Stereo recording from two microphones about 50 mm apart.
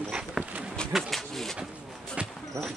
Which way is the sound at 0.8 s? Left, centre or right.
Centre.